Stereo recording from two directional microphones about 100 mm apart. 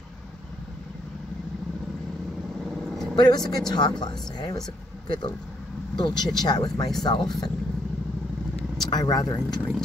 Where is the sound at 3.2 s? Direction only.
45° left (ahead or behind).